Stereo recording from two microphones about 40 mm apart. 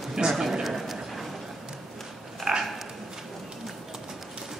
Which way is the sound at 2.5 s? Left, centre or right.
Centre.